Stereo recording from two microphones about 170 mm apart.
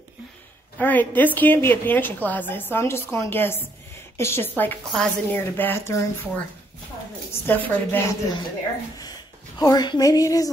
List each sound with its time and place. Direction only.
0.7 s a woman's voice: 10° left (ahead or behind)
7.4 s a woman's voice: 10° left (ahead or behind)
9.0 s speech: 20° left (ahead or behind)